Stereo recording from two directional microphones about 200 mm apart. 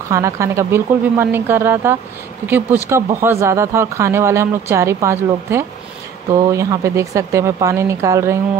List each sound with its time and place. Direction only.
0.1 s speech: 15° right (ahead or behind)